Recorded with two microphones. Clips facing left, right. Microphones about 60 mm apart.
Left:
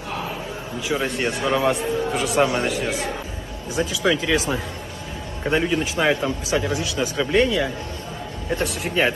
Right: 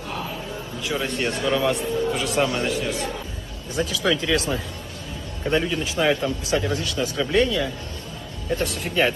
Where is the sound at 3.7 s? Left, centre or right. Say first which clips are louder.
Left 2 dB; centre.